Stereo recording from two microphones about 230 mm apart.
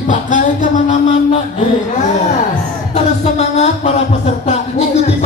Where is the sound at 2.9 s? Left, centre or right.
Left.